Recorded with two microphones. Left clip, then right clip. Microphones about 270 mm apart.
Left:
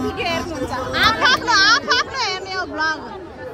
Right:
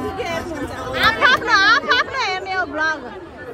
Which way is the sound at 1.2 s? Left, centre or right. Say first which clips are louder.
Right 3 dB; centre.